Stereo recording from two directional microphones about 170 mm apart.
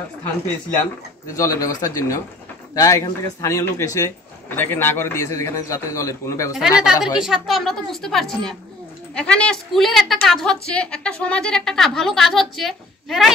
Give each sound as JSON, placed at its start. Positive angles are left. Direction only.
{"t": 1.3, "sound": "a man's voice", "side_deg": 20}
{"t": 6.8, "sound": "a woman's voice", "side_deg": -5}